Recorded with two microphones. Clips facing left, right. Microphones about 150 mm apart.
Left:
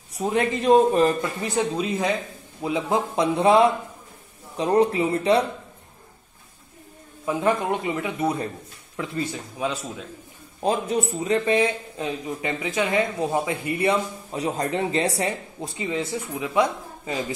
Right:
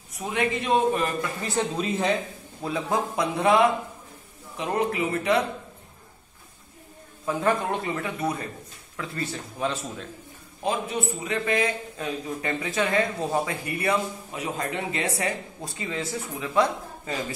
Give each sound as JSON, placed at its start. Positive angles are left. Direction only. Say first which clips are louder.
{"t": 0.1, "sound": "a man's voice", "louder": "left 4 dB", "side_deg": 35}
{"t": 1.4, "sound": "a man's voice", "louder": "left 1 dB", "side_deg": 15}
{"t": 7.2, "sound": "speech", "louder": "left 2 dB", "side_deg": 15}
{"t": 10.6, "sound": "a man's voice", "louder": "left 4 dB", "side_deg": 40}
{"t": 12.3, "sound": "speech", "louder": "left 1 dB", "side_deg": 15}